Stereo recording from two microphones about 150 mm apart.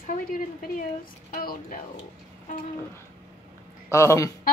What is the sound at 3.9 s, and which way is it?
Speech, 20° left (ahead or behind).